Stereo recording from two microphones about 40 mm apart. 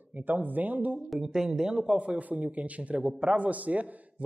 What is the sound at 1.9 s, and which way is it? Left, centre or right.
A man's voice, right.